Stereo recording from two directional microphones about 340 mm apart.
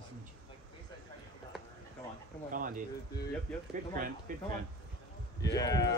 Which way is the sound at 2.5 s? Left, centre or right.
Right.